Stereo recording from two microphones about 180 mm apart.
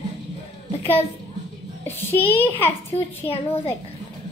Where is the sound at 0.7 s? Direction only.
35° left (ahead or behind).